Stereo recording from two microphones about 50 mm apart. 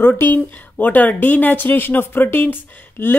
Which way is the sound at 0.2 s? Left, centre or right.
Left.